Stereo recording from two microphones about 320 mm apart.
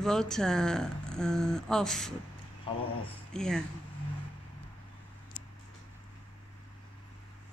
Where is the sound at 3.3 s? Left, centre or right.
Centre.